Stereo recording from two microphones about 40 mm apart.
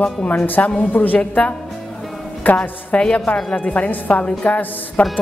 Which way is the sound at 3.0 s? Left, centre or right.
Left.